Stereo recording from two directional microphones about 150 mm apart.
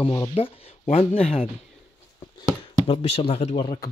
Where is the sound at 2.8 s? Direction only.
40° left (ahead or behind).